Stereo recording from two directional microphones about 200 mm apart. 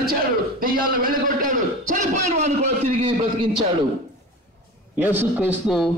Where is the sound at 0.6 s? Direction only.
45° right (ahead or behind).